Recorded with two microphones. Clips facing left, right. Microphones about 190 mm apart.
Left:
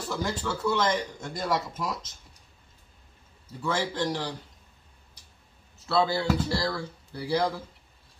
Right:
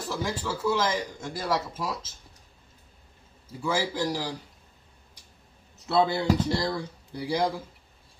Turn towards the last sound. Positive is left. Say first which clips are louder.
# even
turn(degrees=-15)  # may be behind; listen again after turning